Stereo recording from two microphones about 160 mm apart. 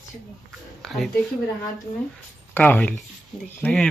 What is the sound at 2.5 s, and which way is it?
Speech, 10° left (ahead or behind).